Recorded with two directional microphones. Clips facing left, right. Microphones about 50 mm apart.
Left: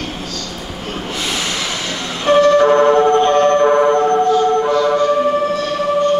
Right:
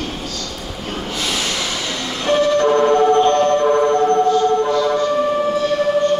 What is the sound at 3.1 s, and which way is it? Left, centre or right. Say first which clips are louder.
Siren: left 2 dB; left.